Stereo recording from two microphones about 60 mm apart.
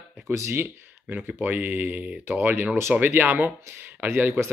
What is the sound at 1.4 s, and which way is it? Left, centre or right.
Speech, right.